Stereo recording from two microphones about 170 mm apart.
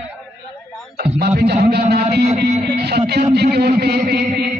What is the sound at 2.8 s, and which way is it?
A man's voice, 80° right.